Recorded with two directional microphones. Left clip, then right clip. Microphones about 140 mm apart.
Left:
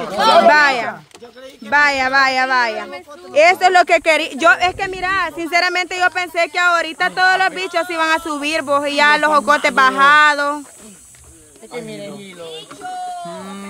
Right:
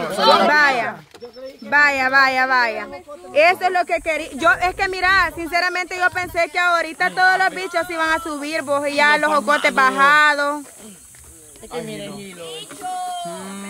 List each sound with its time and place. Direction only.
0.5 s speech: 10° left (ahead or behind)
3.5 s speech: 45° left (ahead or behind)
4.3 s a woman's voice: 25° left (ahead or behind)
4.8 s speech: 10° left (ahead or behind)
5.4 s speech: 20° left (ahead or behind)
11.9 s speech: centre (ahead or behind)
13.3 s a sound: 35° left (ahead or behind)